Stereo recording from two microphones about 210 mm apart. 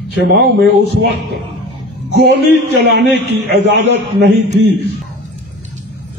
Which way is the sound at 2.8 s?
50° right (ahead or behind).